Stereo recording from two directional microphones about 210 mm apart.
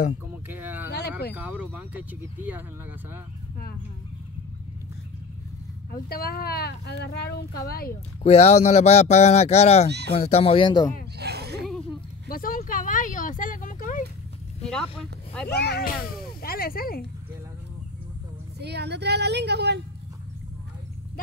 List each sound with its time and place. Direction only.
0.5 s a sound: 10° right (ahead or behind)
1.3 s speech: 5° right (ahead or behind)
5.9 s speech: 45° left (ahead or behind)
8.2 s speech: 30° left (ahead or behind)
11.1 s a sound: 50° right (ahead or behind)
11.6 s a sound: centre (ahead or behind)
12.3 s speech: 45° left (ahead or behind)
14.6 s speech: 5° left (ahead or behind)
15.4 s speech: 50° left (ahead or behind)
18.6 s a woman's voice: 50° right (ahead or behind)